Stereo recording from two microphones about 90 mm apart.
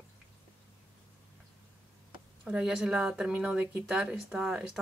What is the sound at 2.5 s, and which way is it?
Speech, 10° right (ahead or behind).